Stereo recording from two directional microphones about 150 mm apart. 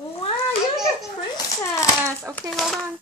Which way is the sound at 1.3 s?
20° left (ahead or behind).